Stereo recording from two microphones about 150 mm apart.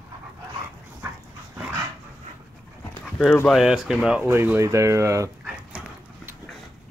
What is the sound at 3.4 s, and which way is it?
Speech, 5° right (ahead or behind).